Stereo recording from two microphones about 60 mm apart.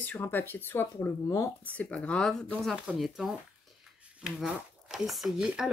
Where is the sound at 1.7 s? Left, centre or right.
Left.